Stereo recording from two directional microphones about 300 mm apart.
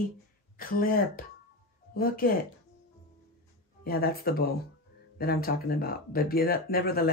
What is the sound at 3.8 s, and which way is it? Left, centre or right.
Speech, left.